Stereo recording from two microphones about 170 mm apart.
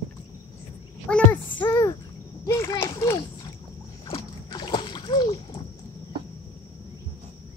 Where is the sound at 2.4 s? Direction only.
20° left (ahead or behind).